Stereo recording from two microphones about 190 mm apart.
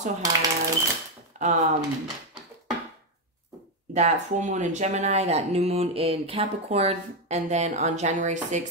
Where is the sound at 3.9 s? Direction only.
40° right (ahead or behind).